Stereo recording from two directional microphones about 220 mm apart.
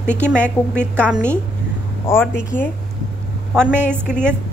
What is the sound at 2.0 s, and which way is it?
Speech, 10° left (ahead or behind).